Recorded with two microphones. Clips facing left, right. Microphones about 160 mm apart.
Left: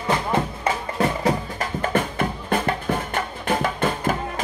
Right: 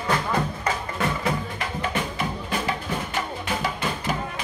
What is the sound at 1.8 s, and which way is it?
Music, 50° left (ahead or behind).